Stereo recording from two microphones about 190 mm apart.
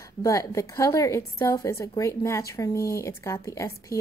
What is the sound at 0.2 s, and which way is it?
A woman's voice, 15° left (ahead or behind).